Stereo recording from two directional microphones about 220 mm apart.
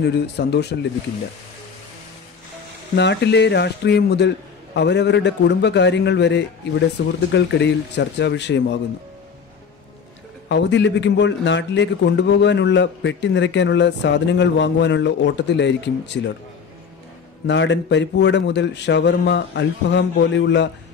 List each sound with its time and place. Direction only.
0.0 s speech: 50° left (ahead or behind)
3.0 s speech: 50° left (ahead or behind)
10.5 s speech: 55° left (ahead or behind)
17.5 s speech: 55° left (ahead or behind)